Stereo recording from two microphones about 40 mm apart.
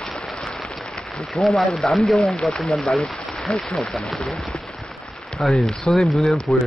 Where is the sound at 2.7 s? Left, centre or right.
Left.